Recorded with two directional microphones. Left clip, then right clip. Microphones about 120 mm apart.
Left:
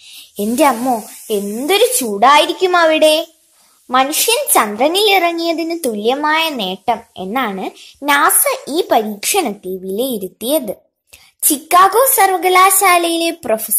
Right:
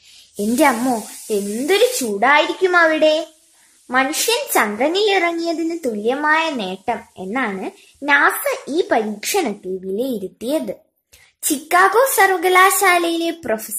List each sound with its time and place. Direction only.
0.6 s a woman's voice: centre (ahead or behind)
1.7 s a child's voice: 15° left (ahead or behind)